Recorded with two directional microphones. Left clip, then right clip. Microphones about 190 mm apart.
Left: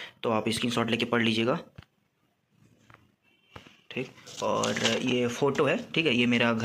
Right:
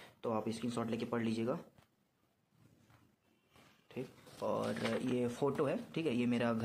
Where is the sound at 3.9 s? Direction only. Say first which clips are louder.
Left 11 dB; 5° right (ahead or behind).